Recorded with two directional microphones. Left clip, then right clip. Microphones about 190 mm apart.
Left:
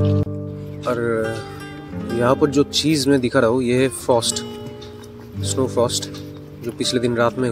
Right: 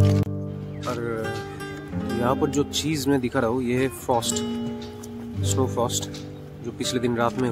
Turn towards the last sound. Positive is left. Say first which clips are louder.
# left 5 dB
turn(degrees=15)  # may be behind; listen again after turning